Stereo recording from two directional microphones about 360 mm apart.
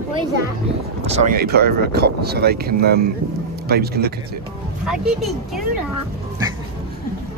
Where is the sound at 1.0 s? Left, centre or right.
Centre.